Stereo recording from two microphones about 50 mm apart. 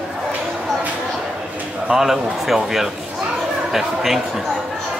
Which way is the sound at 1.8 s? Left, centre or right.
Centre.